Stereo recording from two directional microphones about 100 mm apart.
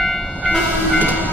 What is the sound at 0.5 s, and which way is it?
Train, 15° left (ahead or behind).